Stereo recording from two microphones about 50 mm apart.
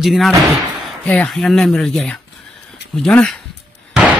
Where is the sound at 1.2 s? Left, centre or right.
Centre.